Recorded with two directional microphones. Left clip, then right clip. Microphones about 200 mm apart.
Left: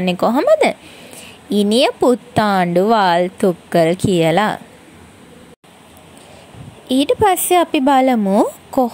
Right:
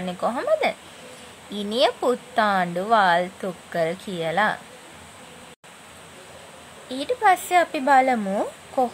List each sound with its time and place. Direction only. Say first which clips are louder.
0.0 s speech: left 10 dB; 35° left (ahead or behind)
7.0 s speech: left 5 dB; 35° left (ahead or behind)